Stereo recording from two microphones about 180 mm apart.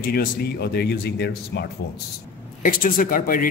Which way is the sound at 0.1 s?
60° left (ahead or behind).